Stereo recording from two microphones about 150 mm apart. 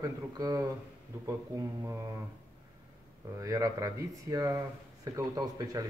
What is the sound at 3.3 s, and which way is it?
Speech, 20° right (ahead or behind).